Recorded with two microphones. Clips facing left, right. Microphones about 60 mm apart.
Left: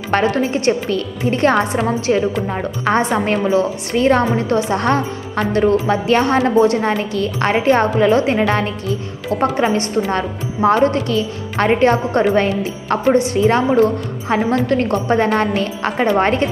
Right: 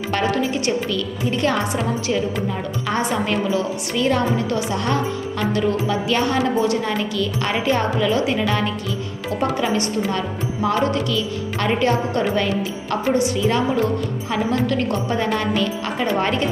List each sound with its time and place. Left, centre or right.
0.1 s a woman's voice: left